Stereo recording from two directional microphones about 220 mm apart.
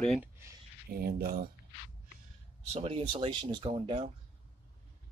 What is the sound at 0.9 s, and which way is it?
Speech, 40° right (ahead or behind).